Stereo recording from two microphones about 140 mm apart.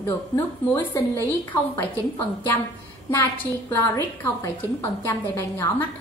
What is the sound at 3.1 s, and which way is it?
A woman's voice, 15° left (ahead or behind).